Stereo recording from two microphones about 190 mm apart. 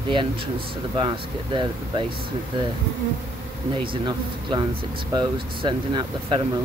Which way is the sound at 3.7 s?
25° right (ahead or behind).